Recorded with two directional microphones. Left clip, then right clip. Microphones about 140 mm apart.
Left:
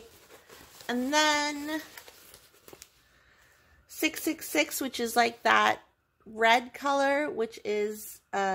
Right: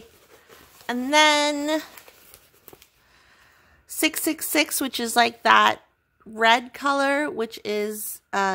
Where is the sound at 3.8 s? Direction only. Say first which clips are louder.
Right 6 dB; 40° right (ahead or behind).